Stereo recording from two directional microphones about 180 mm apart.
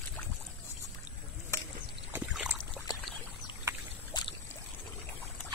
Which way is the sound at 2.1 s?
5° right (ahead or behind).